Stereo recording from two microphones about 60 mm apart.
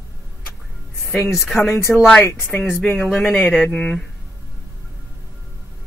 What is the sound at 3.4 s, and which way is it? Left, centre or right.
Speech, left.